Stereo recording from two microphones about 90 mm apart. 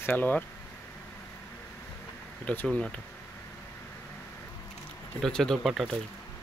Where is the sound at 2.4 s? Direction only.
15° left (ahead or behind).